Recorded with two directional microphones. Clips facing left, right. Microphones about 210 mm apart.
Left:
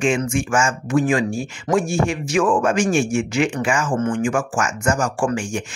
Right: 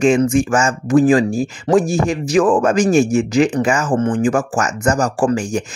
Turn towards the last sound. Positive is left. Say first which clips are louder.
# right 5 dB
turn(degrees=-35)  # may be behind; listen again after turning